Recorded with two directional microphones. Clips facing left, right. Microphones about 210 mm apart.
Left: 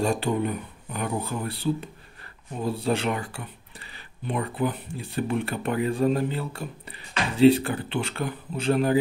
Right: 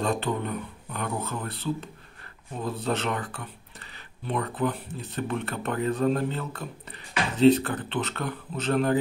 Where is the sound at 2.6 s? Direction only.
30° left (ahead or behind).